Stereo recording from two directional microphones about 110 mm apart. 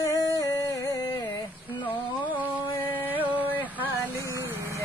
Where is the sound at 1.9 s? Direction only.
15° left (ahead or behind).